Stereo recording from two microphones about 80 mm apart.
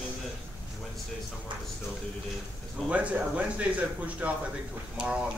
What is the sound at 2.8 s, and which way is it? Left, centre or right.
Speech, centre.